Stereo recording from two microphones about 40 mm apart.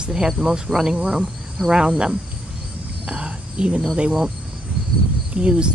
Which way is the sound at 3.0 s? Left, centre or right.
Right.